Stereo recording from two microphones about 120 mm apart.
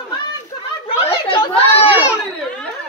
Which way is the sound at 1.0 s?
50° left (ahead or behind).